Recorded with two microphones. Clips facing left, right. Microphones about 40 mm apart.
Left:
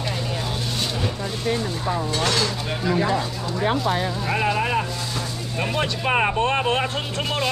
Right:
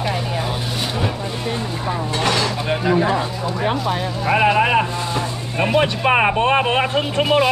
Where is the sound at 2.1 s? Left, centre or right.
Right.